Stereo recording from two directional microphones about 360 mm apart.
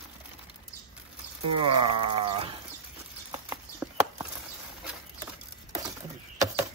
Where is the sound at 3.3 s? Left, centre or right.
Centre.